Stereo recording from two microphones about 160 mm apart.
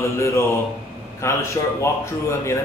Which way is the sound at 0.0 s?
20° left (ahead or behind).